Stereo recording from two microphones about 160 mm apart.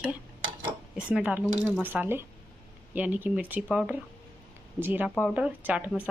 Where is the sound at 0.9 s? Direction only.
5° right (ahead or behind).